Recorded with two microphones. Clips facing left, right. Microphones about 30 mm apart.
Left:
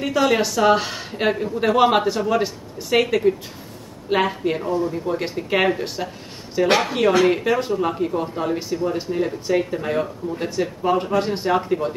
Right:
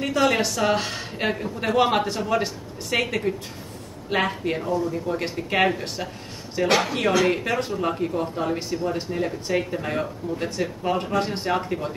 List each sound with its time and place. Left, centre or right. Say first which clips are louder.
0.0 s speech: left 2 dB; centre
4.6 s speech: left 1 dB; left
4.9 s speech: left 2 dB; centre
7.2 s speech: left 4 dB; centre